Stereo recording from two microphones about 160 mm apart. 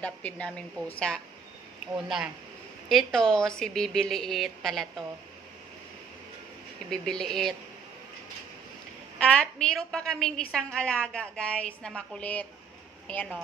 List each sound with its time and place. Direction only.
0.0 s a woman's voice: 10° left (ahead or behind)
6.9 s a woman's voice: 5° left (ahead or behind)
9.2 s a woman's voice: 5° left (ahead or behind)